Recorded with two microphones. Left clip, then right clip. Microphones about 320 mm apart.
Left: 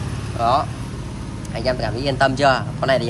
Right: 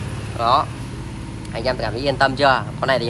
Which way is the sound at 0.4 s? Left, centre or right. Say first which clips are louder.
Right 1 dB; centre.